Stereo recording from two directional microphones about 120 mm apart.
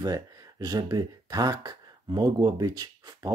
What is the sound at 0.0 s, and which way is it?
Speech, 30° right (ahead or behind).